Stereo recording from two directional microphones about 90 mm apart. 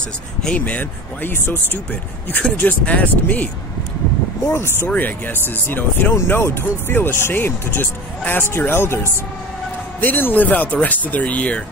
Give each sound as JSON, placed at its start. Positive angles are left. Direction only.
{"t": 0.4, "sound": "speech", "side_deg": 10}
{"t": 4.5, "sound": "speech", "side_deg": 25}